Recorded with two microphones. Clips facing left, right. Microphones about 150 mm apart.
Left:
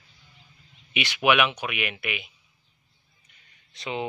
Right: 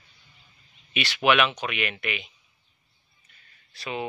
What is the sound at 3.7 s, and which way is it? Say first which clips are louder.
Speech: left 1 dB; 20° left (ahead or behind).